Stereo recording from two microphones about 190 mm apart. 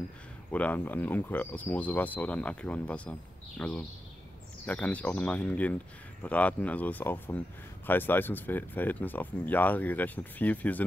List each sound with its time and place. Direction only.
0.5 s speech: 10° left (ahead or behind)